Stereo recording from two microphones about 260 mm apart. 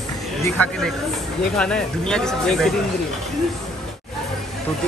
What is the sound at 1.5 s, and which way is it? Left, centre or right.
Speech, centre.